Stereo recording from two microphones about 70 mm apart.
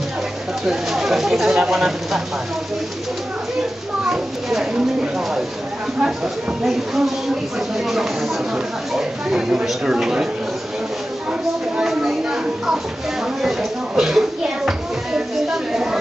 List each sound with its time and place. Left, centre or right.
0.7 s speech: centre
4.0 s a sound: centre
6.0 s speech: centre
11.7 s speech: centre